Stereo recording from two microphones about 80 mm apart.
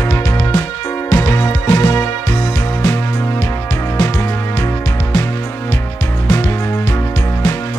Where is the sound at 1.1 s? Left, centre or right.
Left.